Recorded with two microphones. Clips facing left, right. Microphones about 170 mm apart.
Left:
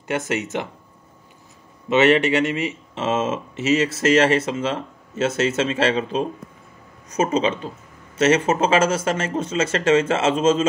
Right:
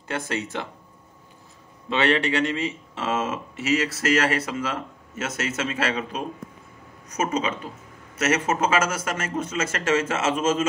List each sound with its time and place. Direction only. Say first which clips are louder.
0.3 s speech: left 4 dB; 20° left (ahead or behind)
1.9 s speech: left 6 dB; 20° left (ahead or behind)